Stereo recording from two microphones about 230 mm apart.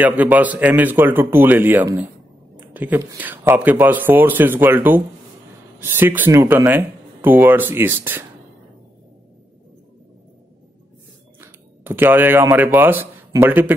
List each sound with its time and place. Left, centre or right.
0.0 s speech: centre
11.4 s speech: centre